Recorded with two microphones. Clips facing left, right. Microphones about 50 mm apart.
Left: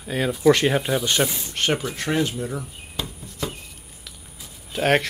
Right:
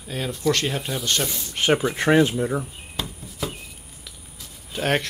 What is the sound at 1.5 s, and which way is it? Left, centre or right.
Speech, centre.